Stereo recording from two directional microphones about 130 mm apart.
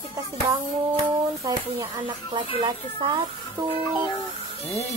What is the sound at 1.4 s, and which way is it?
Speech, 35° right (ahead or behind).